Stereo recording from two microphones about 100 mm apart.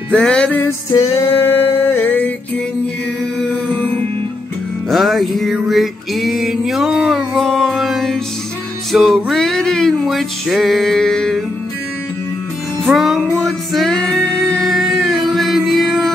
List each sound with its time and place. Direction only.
0.1 s music: 10° left (ahead or behind)
0.6 s music: 30° left (ahead or behind)
4.8 s music: centre (ahead or behind)
12.8 s music: centre (ahead or behind)
13.4 s singing: 5° left (ahead or behind)
15.2 s music: centre (ahead or behind)